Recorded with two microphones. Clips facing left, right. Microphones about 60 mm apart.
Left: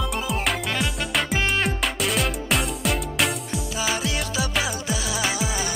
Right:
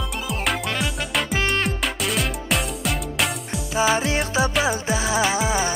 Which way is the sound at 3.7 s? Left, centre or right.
Right.